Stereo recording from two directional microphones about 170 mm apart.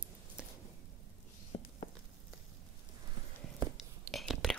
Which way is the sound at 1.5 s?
35° left (ahead or behind).